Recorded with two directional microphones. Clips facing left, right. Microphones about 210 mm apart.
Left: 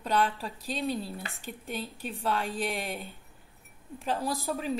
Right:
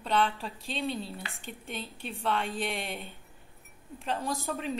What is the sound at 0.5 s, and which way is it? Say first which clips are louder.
Speech: left 3 dB; 40° left (ahead or behind).